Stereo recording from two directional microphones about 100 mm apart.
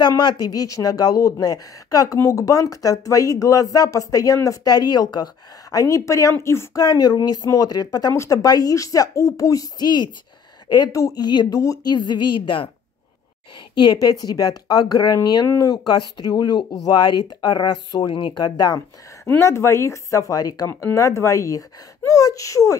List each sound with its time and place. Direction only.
0.2 s speech: 45° left (ahead or behind); by 6.8 s 25° left (ahead or behind)
6.8 s speech: 40° left (ahead or behind)
10.9 s a woman's voice: 35° left (ahead or behind); by 12.6 s 55° left (ahead or behind)
13.7 s a woman's voice: 45° left (ahead or behind); by 18.4 s 60° left (ahead or behind)
18.4 s speech: 40° left (ahead or behind)
19.2 s speech: 25° left (ahead or behind)